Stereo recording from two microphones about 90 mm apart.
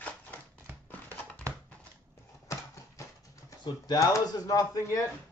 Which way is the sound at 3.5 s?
50° left (ahead or behind).